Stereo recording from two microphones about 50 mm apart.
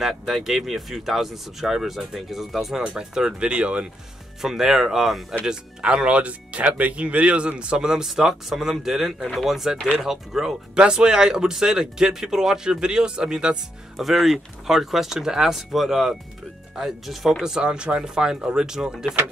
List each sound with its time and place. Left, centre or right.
0.0 s speech: centre; by 3.9 s right
4.4 s speech: centre
14.1 s speech: centre